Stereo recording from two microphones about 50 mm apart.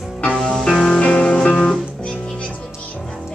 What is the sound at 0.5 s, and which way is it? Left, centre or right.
Music, centre.